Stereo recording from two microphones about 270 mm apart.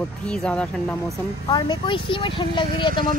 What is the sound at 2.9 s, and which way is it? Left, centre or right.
Speech, right.